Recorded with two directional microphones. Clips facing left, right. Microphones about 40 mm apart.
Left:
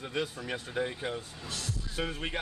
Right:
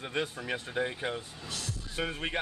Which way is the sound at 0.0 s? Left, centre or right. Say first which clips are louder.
Even; right.